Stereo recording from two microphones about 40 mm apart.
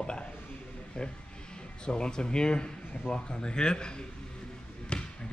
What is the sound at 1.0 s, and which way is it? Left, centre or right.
A man's voice, centre.